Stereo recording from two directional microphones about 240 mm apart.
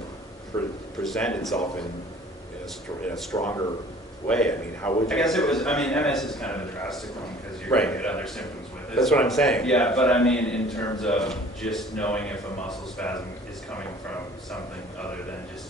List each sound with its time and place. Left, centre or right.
0.5 s a sound: centre
1.0 s a man's voice: centre
3.3 s speech: centre
4.3 s a man's voice: centre